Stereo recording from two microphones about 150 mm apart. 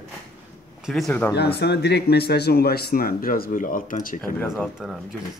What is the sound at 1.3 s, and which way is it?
Speech, 90° left.